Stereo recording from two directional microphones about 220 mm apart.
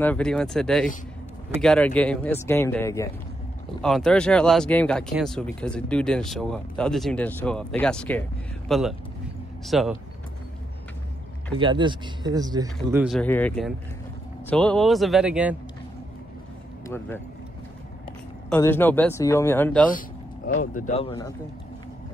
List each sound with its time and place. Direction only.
0.0 s speech: 5° left (ahead or behind)
3.8 s speech: 5° left (ahead or behind)
11.5 s speech: 20° right (ahead or behind)
12.9 s speech: 5° right (ahead or behind)
13.2 s speech: 5° left (ahead or behind)
16.8 s speech: 10° left (ahead or behind)
18.5 s speech: 10° left (ahead or behind)
19.9 s speech: 40° left (ahead or behind)